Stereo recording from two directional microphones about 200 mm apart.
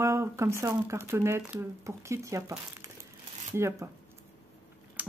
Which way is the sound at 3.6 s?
15° right (ahead or behind).